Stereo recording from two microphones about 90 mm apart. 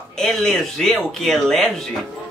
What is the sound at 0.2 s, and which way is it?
Speech, 5° left (ahead or behind).